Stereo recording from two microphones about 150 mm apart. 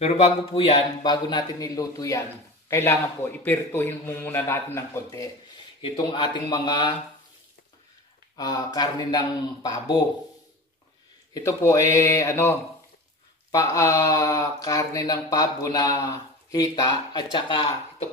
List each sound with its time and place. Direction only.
0.0 s speech: 45° left (ahead or behind)
1.0 s a man's voice: 30° left (ahead or behind)
5.8 s speech: 30° left (ahead or behind)
8.4 s speech: 25° left (ahead or behind)
11.3 s speech: 20° left (ahead or behind)